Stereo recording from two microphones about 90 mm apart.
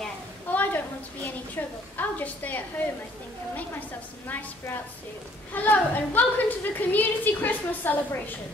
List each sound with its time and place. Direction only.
0.5 s a woman's voice: 20° left (ahead or behind)
4.3 s a woman's voice: 20° left (ahead or behind)